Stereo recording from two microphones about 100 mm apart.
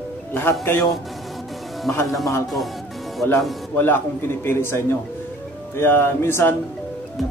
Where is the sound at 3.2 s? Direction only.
20° left (ahead or behind).